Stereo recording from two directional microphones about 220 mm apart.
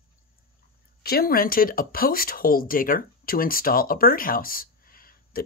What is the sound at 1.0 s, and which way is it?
Speech, 45° left (ahead or behind).